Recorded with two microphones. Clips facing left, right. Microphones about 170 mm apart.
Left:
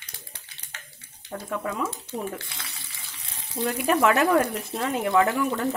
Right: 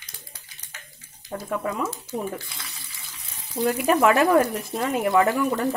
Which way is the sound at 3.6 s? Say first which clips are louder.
Right 4 dB; 25° right (ahead or behind).